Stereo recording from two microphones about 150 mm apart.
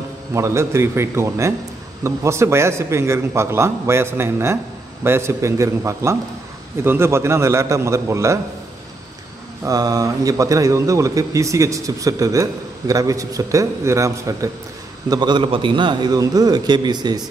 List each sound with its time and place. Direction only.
0.3 s a man's voice: 20° right (ahead or behind)
9.7 s a man's voice: 25° right (ahead or behind)